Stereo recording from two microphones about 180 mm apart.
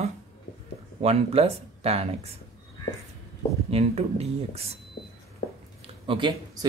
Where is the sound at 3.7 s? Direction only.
35° right (ahead or behind).